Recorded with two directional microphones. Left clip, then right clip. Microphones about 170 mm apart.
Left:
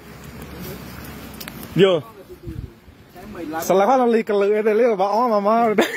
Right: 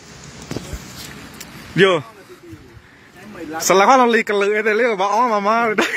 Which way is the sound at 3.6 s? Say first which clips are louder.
Right 4 dB; 30° right (ahead or behind).